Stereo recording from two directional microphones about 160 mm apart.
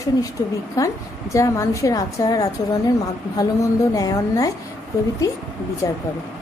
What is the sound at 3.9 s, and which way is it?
Speech, 20° left (ahead or behind).